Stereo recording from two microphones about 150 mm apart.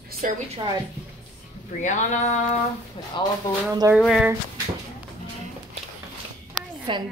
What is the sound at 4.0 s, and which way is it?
Speech, 5° right (ahead or behind).